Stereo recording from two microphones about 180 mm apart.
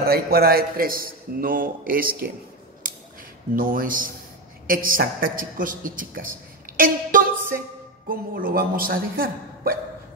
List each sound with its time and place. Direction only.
0.0 s a man's voice: 60° right (ahead or behind)
2.8 s finger snapping: 50° right (ahead or behind)
3.5 s a man's voice: 50° right (ahead or behind)
6.8 s a sound: 50° right (ahead or behind)
8.1 s a man's voice: 50° right (ahead or behind)